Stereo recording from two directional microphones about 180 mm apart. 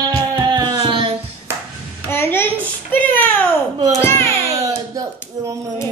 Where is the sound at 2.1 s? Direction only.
10° left (ahead or behind).